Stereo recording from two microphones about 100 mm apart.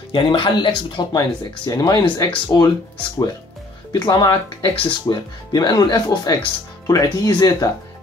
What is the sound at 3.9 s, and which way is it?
Speech, 40° left (ahead or behind).